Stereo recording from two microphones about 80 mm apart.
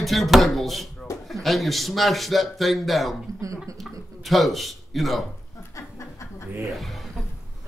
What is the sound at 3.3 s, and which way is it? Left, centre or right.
Speech, right.